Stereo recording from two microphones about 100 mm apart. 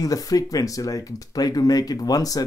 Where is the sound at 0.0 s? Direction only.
35° left (ahead or behind).